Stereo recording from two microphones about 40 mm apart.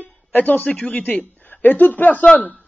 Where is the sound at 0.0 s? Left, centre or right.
Left.